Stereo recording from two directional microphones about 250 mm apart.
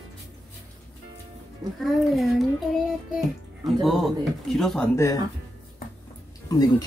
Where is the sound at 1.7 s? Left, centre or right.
Centre.